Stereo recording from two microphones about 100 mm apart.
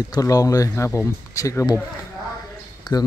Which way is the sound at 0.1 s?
35° left (ahead or behind).